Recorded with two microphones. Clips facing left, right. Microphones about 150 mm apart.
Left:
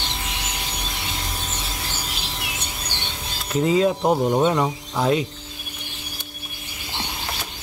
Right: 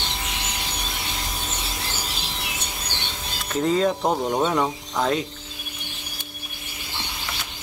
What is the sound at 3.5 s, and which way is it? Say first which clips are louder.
Speech: left 2 dB; 5° left (ahead or behind).